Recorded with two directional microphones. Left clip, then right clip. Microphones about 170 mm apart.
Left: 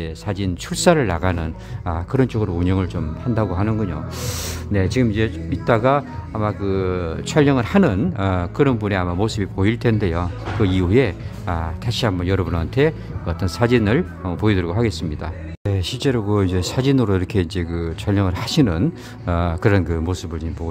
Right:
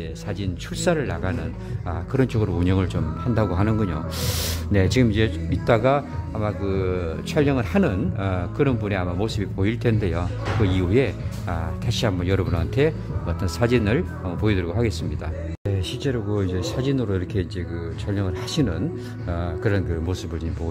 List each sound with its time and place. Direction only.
0.0 s speech: 30° left (ahead or behind)